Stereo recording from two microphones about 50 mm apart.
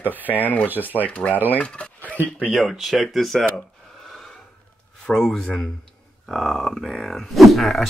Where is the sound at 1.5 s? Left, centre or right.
Left.